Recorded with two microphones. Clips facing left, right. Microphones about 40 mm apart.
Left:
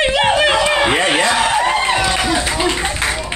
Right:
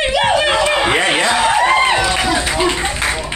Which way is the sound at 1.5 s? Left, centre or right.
Right.